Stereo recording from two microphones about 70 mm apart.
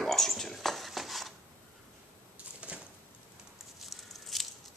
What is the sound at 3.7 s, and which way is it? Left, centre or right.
Patter, centre.